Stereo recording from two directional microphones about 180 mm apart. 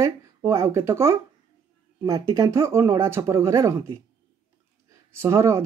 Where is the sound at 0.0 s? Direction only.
15° right (ahead or behind).